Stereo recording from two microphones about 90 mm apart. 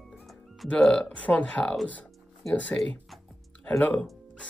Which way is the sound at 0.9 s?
15° left (ahead or behind).